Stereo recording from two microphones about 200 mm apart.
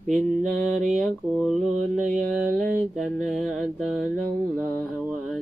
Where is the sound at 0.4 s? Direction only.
40° right (ahead or behind).